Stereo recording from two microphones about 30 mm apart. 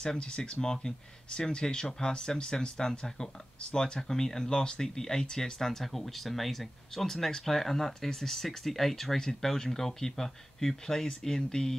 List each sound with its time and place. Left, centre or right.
0.0 s speech: left